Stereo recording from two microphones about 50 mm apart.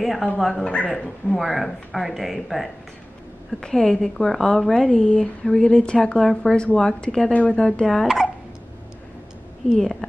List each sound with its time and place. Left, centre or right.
0.0 s cat: centre
0.4 s speech: centre
0.7 s speech: left
0.9 s a woman's voice: centre
1.4 s speech: centre
3.6 s a woman's voice: centre
7.3 s speech: left
7.8 s a woman's voice: centre